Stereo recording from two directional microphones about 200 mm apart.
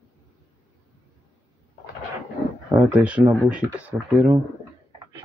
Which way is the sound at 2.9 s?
5° right (ahead or behind).